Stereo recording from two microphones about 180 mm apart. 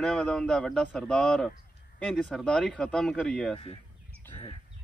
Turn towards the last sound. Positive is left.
turn(degrees=30)  # may be behind; listen again after turning